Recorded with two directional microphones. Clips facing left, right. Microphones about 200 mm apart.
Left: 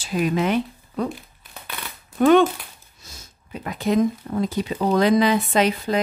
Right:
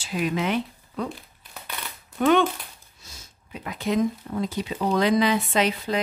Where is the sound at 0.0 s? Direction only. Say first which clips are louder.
Left 4 dB; 40° left (ahead or behind).